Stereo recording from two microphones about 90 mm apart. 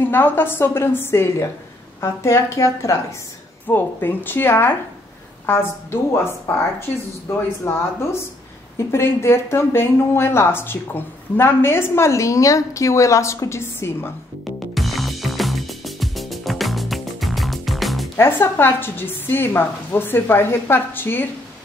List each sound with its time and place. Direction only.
0.0 s a woman's voice: 25° left (ahead or behind)
3.6 s speech: 20° left (ahead or behind)
14.8 s music: centre (ahead or behind)
18.1 s speech: 25° left (ahead or behind)